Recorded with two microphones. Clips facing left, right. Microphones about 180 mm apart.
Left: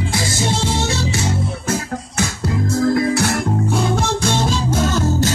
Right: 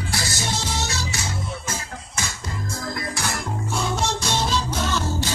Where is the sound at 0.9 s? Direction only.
25° left (ahead or behind).